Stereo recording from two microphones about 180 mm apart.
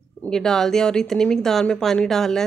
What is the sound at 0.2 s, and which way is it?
Speech, 5° left (ahead or behind).